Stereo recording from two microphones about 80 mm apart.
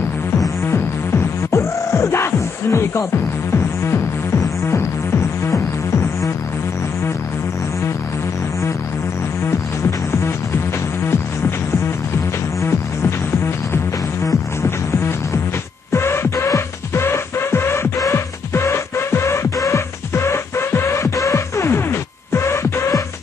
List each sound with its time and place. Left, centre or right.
0.7 s music: left
9.5 s music: left
14.2 s music: left